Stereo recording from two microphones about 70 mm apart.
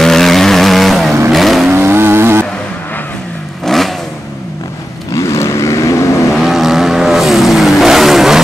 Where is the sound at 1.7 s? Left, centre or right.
Right.